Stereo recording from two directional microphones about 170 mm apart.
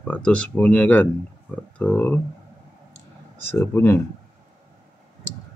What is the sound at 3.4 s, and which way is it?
Speech, 15° left (ahead or behind).